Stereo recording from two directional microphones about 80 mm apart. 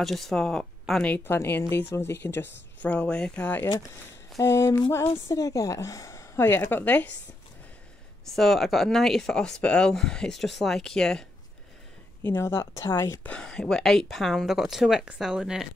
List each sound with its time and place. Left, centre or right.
0.0 s speech: centre
1.0 s speech: left
4.4 s speech: left
5.3 s a woman's voice: left
6.4 s speech: left
8.3 s speech: centre
12.2 s speech: left
13.2 s speech: centre